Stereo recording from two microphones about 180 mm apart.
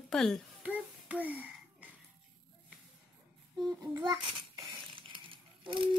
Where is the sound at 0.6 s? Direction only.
10° right (ahead or behind).